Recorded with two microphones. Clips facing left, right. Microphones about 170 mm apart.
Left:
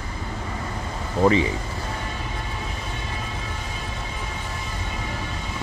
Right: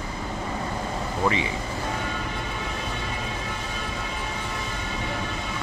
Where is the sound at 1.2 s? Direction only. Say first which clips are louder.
Left 7 dB; 35° left (ahead or behind).